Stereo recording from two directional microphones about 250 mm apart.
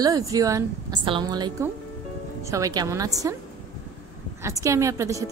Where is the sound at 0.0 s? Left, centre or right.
Centre.